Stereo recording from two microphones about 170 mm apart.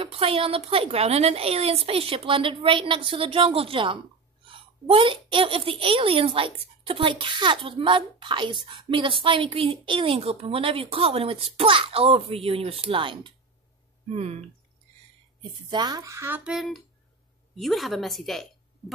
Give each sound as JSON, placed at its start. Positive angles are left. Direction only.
{"t": 0.0, "sound": "a child's voice", "side_deg": -35}
{"t": 15.7, "sound": "a woman's voice", "side_deg": -25}